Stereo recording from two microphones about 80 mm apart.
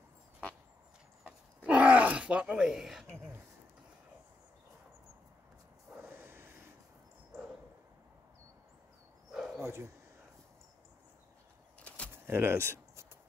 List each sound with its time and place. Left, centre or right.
1.7 s groan: centre
6.0 s vehicle: right
9.3 s dog: centre
9.6 s dog: right
12.3 s speech: right